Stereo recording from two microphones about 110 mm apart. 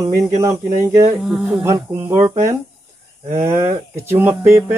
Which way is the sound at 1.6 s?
25° right (ahead or behind).